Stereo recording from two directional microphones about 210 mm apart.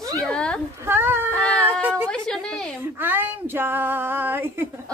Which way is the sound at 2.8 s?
10° right (ahead or behind).